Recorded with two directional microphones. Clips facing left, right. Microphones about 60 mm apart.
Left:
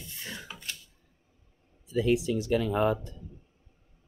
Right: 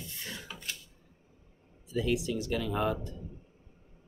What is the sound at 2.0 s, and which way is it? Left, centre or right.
Speech, left.